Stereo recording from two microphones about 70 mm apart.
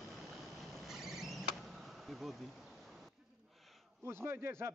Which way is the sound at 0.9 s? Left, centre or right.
Centre.